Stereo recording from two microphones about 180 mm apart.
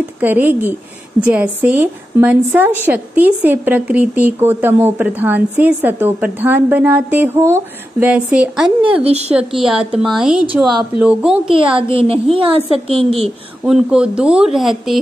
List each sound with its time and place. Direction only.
0.2 s a woman's voice: 10° right (ahead or behind)
9.0 s a woman's voice: 35° right (ahead or behind)
9.3 s speech: 5° right (ahead or behind)
11.5 s a woman's voice: 30° right (ahead or behind)
13.7 s speech: 5° right (ahead or behind)